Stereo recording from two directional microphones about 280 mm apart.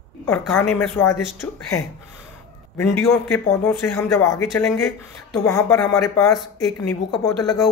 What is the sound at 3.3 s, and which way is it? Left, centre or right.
A woman's voice, centre.